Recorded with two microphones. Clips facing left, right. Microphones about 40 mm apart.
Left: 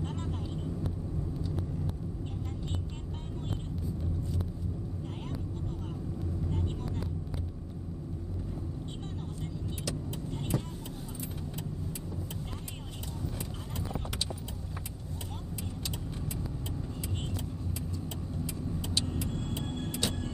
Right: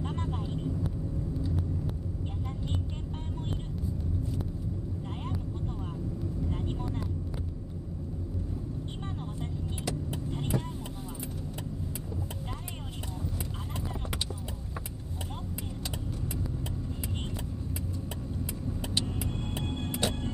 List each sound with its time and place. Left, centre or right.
0.0 s vehicle: right
6.5 s vehicle: right
9.4 s vehicle: right
18.8 s vehicle: right